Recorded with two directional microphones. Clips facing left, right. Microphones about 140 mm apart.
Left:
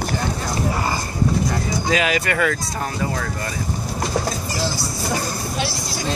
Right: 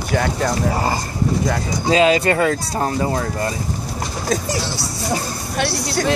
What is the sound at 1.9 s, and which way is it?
Speech, 30° right (ahead or behind).